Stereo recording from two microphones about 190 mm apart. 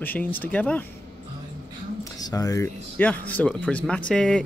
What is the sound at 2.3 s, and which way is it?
Speech, 15° left (ahead or behind).